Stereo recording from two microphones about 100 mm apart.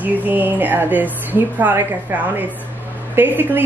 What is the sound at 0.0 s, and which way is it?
Speech, 15° right (ahead or behind).